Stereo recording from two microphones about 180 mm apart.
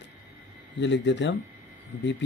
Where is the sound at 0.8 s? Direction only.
80° left.